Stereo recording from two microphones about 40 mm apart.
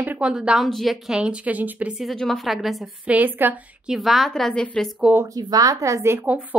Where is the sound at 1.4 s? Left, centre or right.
Right.